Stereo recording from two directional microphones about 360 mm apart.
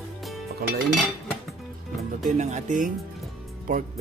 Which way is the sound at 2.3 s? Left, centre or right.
Centre.